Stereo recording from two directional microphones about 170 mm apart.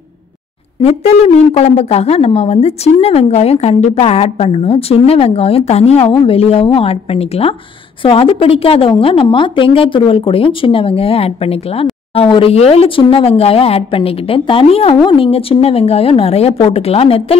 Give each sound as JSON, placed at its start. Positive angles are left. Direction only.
{"t": 0.8, "sound": "speech", "side_deg": 40}